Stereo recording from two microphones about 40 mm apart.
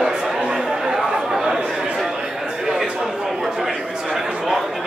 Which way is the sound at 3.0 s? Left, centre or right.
Centre.